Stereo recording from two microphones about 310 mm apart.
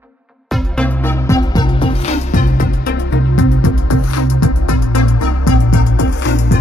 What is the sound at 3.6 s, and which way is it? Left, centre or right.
Music, left.